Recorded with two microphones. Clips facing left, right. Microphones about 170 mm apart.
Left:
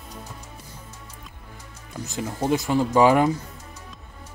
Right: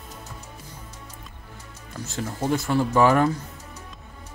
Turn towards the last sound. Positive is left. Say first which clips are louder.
# left 1 dB
turn(degrees=15)  # may be behind; listen again after turning